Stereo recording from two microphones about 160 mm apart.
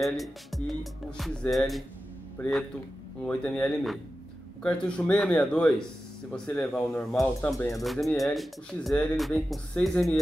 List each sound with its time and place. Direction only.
0.0 s music: centre (ahead or behind)
3.3 s speech: 10° left (ahead or behind)
6.3 s music: 5° left (ahead or behind)
7.5 s speech: 20° left (ahead or behind)
7.8 s music: centre (ahead or behind)